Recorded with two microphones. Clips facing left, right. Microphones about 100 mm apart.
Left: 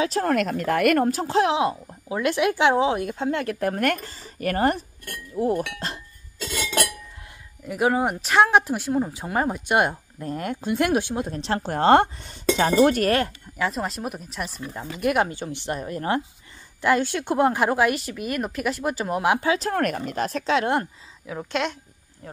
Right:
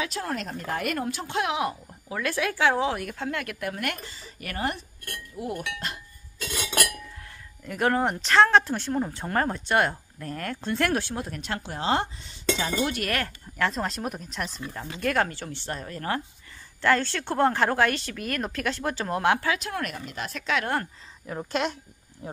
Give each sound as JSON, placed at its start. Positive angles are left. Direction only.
{"t": 0.2, "sound": "speech", "side_deg": 65}
{"t": 1.0, "sound": "speech", "side_deg": 40}
{"t": 3.5, "sound": "a woman's voice", "side_deg": 40}
{"t": 7.6, "sound": "speech", "side_deg": 10}
{"t": 11.6, "sound": "a woman's voice", "side_deg": 50}
{"t": 13.6, "sound": "speech", "side_deg": 5}
{"t": 19.5, "sound": "speech", "side_deg": 40}
{"t": 21.3, "sound": "a woman's voice", "side_deg": 0}
{"t": 22.2, "sound": "speech", "side_deg": -20}